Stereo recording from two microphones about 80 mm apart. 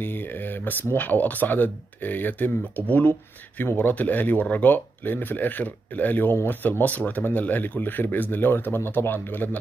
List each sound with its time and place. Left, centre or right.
0.7 s speech: left